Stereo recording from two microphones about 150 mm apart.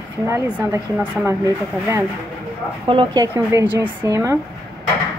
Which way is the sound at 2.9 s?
30° right (ahead or behind).